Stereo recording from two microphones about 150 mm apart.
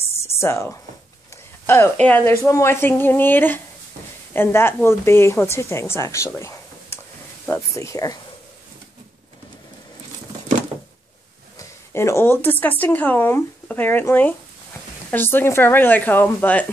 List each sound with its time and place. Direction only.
0.4 s a woman's voice: 15° left (ahead or behind)
11.5 s a woman's voice: 20° left (ahead or behind)